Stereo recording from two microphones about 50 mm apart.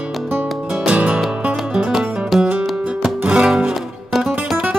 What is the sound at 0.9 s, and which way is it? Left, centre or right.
Music, right.